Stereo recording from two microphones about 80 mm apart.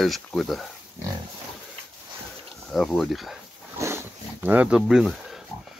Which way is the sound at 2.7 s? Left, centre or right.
Centre.